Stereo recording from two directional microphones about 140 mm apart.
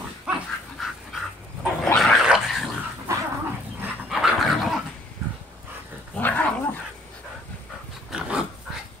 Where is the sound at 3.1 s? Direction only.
20° right (ahead or behind).